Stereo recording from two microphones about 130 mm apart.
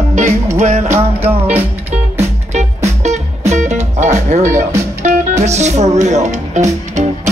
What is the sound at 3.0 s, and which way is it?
Music, 60° right (ahead or behind).